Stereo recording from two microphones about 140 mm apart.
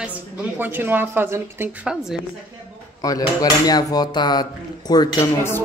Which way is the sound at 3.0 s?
25° left (ahead or behind).